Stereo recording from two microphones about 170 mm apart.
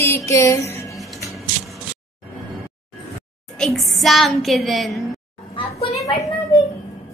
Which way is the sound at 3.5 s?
Centre (ahead or behind).